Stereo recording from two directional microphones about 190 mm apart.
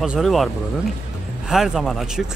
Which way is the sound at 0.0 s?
Centre (ahead or behind).